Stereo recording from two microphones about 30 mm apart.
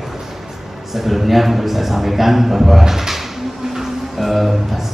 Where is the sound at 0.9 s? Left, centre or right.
Centre.